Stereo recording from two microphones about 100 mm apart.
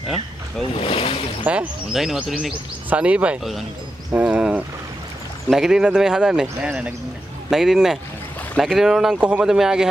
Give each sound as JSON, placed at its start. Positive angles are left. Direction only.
{"t": 0.7, "sound": "speech", "side_deg": 70}
{"t": 1.4, "sound": "speech", "side_deg": -15}
{"t": 1.9, "sound": "speech", "side_deg": -5}